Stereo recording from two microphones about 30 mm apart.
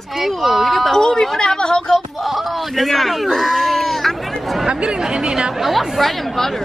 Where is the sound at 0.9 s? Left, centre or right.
Centre.